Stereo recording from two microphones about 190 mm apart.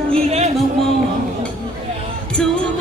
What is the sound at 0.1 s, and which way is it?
Music, 35° right (ahead or behind).